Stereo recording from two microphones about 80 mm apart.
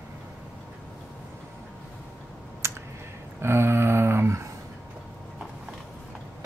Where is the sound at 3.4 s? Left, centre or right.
Right.